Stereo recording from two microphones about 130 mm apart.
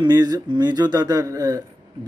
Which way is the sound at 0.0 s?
30° right (ahead or behind).